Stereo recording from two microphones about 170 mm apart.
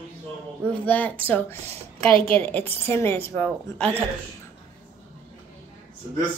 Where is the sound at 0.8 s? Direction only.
10° left (ahead or behind).